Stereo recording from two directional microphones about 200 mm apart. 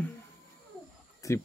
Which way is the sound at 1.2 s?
15° left (ahead or behind).